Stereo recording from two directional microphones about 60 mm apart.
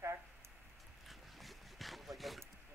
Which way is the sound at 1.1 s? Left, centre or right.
Centre.